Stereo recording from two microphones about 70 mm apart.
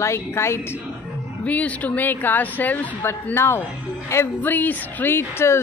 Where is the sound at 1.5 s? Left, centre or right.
Left.